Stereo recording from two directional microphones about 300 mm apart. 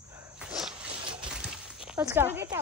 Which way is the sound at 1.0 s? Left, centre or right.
Centre.